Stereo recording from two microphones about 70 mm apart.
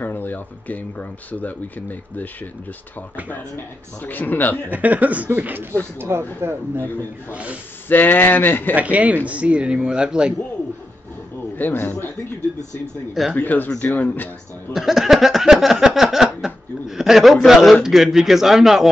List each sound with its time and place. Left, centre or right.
0.0 s speech: left
3.3 s speech: left
4.7 s speech: right
6.8 s speech: left
8.7 s speech: centre
11.5 s a man's voice: left
13.4 s speech: left
14.7 s a sound: centre
17.5 s a man's voice: centre